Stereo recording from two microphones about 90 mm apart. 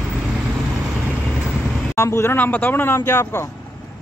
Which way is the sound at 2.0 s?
30° left (ahead or behind).